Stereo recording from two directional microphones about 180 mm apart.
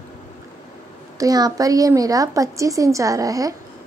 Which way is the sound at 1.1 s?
20° right (ahead or behind).